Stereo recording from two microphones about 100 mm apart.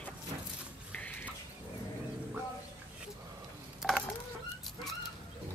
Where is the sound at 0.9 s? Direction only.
15° left (ahead or behind).